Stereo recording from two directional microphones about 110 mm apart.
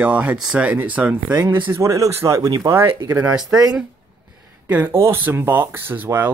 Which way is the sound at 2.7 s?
20° right (ahead or behind).